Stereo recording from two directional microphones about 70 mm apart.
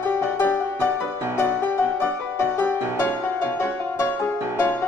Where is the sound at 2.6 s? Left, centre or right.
Left.